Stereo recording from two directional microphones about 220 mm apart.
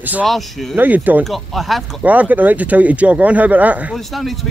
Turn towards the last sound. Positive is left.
turn(degrees=0)  # may be behind; listen again after turning